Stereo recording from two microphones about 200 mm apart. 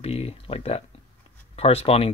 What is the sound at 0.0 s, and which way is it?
Speech, 30° left (ahead or behind).